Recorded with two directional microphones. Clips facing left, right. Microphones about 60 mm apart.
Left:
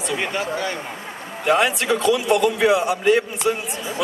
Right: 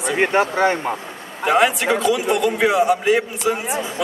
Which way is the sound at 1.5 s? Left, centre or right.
Centre.